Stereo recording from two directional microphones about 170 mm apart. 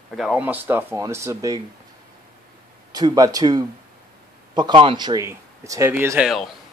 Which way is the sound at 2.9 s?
20° right (ahead or behind).